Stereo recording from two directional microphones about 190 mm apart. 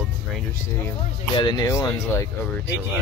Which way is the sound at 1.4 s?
20° left (ahead or behind).